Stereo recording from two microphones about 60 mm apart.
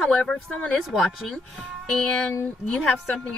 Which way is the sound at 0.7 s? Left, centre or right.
Centre.